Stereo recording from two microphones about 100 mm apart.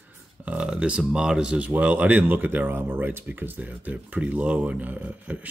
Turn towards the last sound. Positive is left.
turn(degrees=-15)  # may be behind; listen again after turning